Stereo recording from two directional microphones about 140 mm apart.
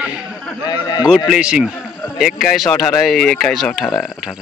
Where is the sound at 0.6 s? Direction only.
30° left (ahead or behind).